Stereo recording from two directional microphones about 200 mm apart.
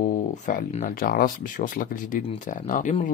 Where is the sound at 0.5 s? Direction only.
40° left (ahead or behind).